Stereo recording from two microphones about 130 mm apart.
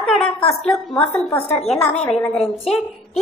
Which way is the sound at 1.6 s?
5° left (ahead or behind).